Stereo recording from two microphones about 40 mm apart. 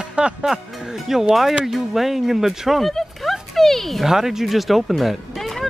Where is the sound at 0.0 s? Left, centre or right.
Right.